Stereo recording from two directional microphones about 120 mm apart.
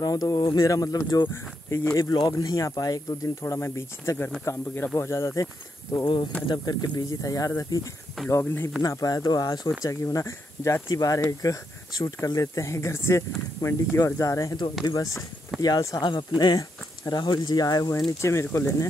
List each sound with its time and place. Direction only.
0.0 s speech: 30° left (ahead or behind)
16.0 s speech: 40° left (ahead or behind); by 18.9 s 25° left (ahead or behind)